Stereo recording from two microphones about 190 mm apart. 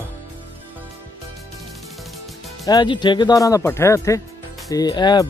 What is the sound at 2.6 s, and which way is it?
Speech, 20° left (ahead or behind).